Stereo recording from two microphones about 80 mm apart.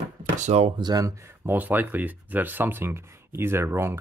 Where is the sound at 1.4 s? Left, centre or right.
Right.